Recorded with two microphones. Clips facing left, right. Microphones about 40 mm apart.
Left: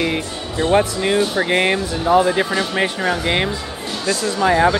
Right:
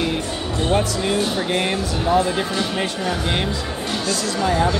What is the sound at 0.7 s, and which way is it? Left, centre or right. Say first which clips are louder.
Speech: left 4 dB; left.